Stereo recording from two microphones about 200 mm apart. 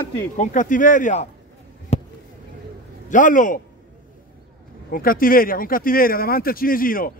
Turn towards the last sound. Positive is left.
turn(degrees=45)  # may be behind; listen again after turning